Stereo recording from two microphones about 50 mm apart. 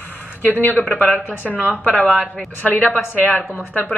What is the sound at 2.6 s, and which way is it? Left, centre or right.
Speech, left.